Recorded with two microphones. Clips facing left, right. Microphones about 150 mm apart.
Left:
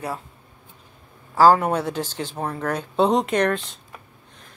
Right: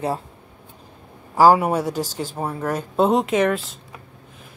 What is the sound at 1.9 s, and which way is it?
Speech, 40° right (ahead or behind).